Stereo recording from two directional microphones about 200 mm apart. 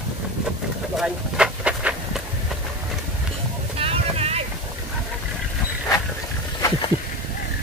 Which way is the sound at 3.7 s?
30° right (ahead or behind).